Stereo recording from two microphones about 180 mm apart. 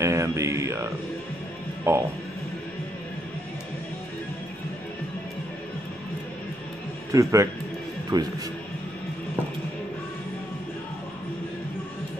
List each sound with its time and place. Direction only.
0.0 s music: 15° right (ahead or behind)
1.9 s music: 15° right (ahead or behind)
7.1 s speech: 15° right (ahead or behind)